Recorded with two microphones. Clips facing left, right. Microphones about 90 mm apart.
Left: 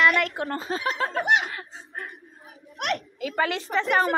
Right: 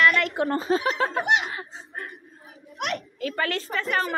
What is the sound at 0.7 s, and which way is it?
Speech, 25° right (ahead or behind).